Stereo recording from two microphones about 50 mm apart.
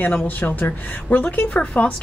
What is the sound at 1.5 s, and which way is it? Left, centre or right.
Speech, left.